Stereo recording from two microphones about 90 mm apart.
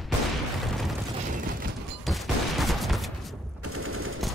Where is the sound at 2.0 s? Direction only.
Centre (ahead or behind).